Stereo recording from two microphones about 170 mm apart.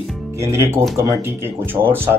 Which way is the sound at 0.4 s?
15° right (ahead or behind).